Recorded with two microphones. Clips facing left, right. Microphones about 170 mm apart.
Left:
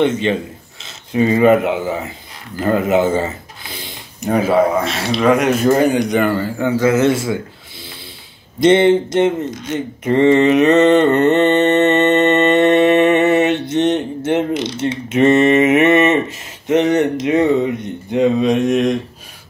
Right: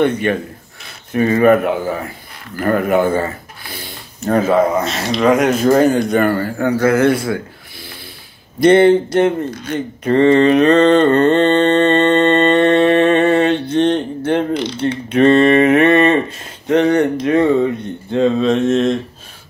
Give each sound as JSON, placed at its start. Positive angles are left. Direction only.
{"t": 0.0, "sound": "speech", "side_deg": 20}
{"t": 4.2, "sound": "a man's voice", "side_deg": 10}
{"t": 8.5, "sound": "speech", "side_deg": 20}
{"t": 9.7, "sound": "a sound", "side_deg": 20}
{"t": 13.7, "sound": "mantra", "side_deg": 20}
{"t": 14.5, "sound": "a sound", "side_deg": 20}
{"t": 16.6, "sound": "speech", "side_deg": 20}